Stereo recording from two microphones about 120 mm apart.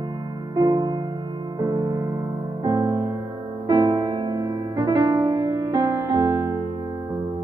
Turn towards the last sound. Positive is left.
turn(degrees=-25)  # may be behind; listen again after turning